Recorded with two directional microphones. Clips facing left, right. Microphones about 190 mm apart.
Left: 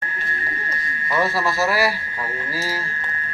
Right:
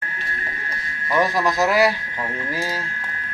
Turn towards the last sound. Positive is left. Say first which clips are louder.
# right 3 dB
turn(degrees=-20)  # may be behind; listen again after turning